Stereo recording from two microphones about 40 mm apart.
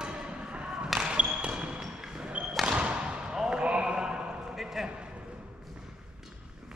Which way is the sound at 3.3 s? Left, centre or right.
Centre.